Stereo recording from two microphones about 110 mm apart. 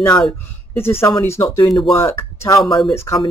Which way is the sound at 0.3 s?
20° left (ahead or behind).